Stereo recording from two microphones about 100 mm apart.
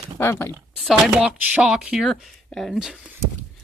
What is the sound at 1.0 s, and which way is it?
Speech, 10° right (ahead or behind).